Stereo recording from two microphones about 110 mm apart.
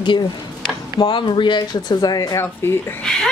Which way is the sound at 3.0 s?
5° left (ahead or behind).